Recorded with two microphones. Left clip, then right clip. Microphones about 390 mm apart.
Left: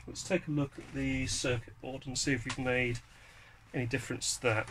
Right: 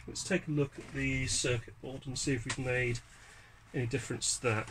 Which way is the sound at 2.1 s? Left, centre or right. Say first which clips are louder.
Left 2 dB; left.